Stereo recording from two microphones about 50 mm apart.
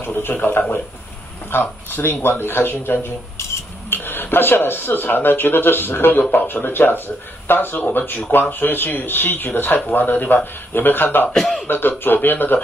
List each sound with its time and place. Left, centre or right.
0.0 s speech: left
11.2 s speech: centre
11.6 s speech: left